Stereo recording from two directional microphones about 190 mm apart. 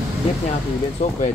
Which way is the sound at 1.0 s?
35° left (ahead or behind).